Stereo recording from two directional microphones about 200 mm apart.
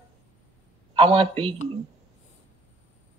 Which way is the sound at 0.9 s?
30° right (ahead or behind).